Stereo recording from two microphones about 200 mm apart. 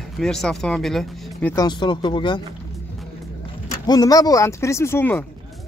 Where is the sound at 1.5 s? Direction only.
20° left (ahead or behind).